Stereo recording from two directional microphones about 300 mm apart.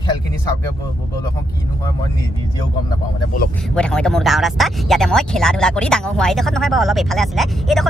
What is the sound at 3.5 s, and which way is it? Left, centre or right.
Speech, centre.